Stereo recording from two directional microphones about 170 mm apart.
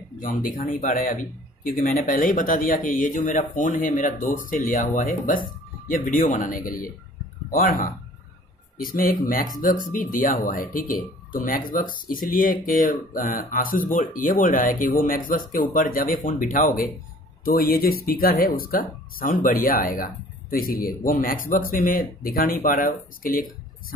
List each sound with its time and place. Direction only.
0.2 s a man's voice: 55° left (ahead or behind)